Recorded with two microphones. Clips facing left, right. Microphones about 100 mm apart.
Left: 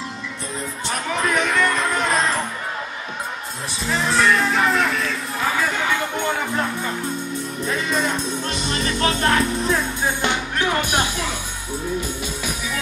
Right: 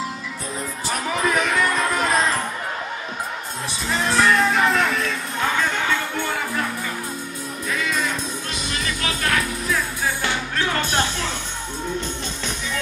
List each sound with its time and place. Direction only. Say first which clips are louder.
0.8 s music: even; centre (ahead or behind)
3.9 s music: even; centre (ahead or behind)
5.6 s music: left 1 dB; 15° left (ahead or behind)
7.6 s music: left 2 dB; 30° left (ahead or behind); by 11.3 s 15° left (ahead or behind)